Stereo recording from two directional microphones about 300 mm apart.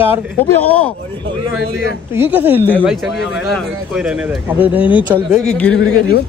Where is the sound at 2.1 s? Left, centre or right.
Centre.